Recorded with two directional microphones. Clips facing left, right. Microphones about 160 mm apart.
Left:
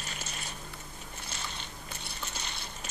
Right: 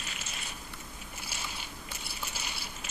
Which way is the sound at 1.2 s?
5° right (ahead or behind).